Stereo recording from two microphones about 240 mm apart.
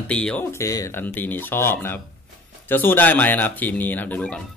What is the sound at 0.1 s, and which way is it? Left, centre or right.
Speech, centre.